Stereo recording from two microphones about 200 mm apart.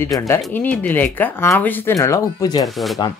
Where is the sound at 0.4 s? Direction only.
10° left (ahead or behind).